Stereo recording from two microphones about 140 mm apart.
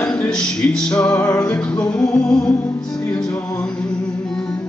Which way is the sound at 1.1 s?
15° left (ahead or behind).